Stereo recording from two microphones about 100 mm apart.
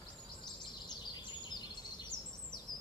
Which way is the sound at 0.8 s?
45° left (ahead or behind).